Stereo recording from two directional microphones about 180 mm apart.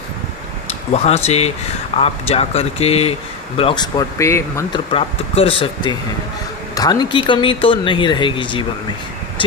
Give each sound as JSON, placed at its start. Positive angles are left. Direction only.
{"t": 0.9, "sound": "speech", "side_deg": 35}
{"t": 4.7, "sound": "speech", "side_deg": 30}